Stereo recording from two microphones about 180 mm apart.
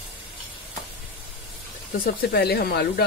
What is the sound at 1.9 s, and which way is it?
Speech, 60° left (ahead or behind).